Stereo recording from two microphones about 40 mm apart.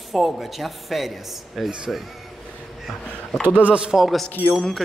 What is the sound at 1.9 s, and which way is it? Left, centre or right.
Speech, centre.